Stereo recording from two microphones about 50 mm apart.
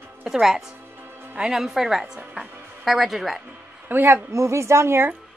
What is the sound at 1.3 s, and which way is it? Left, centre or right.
A woman's voice, centre.